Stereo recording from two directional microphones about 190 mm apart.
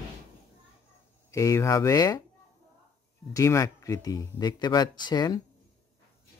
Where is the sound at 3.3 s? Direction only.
15° left (ahead or behind).